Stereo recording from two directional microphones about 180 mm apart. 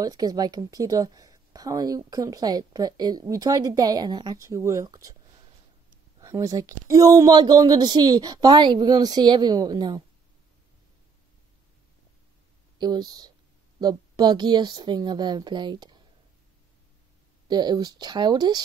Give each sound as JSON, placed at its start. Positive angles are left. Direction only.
{"t": 0.0, "sound": "speech", "side_deg": -20}
{"t": 6.2, "sound": "speech", "side_deg": -20}
{"t": 12.7, "sound": "speech", "side_deg": -25}
{"t": 17.5, "sound": "speech", "side_deg": -25}